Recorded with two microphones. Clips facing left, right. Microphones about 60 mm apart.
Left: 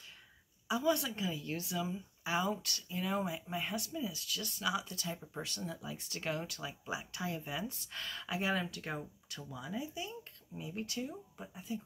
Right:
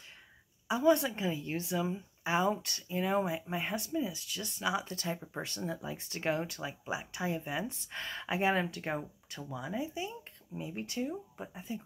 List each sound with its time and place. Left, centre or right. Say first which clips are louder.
0.7 s a woman's voice: right 6 dB; right
4.8 s a woman's voice: right 5 dB; right